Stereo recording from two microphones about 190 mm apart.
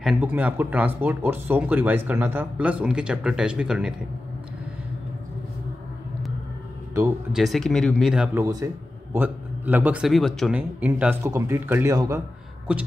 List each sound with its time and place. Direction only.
0.0 s speech: 5° right (ahead or behind)
7.3 s speech: centre (ahead or behind)